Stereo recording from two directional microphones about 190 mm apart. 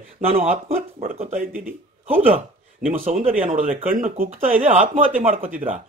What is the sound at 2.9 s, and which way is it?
Speech, 35° right (ahead or behind).